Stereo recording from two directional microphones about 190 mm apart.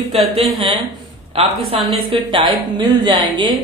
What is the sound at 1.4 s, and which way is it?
Speech, 30° right (ahead or behind).